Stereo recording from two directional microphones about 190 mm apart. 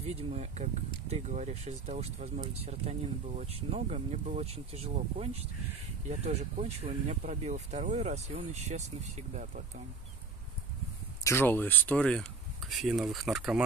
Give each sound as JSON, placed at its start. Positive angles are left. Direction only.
{"t": 0.0, "sound": "speech", "side_deg": -35}
{"t": 11.2, "sound": "speech", "side_deg": 10}